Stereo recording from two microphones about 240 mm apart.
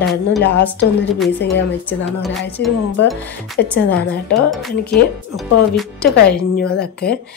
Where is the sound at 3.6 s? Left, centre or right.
Left.